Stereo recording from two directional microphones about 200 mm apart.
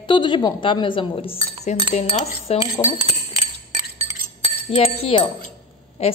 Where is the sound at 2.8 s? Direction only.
15° left (ahead or behind).